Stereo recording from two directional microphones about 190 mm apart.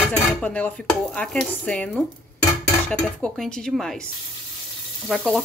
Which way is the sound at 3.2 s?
5° left (ahead or behind).